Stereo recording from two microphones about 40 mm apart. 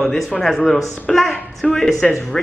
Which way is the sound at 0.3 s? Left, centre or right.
Centre.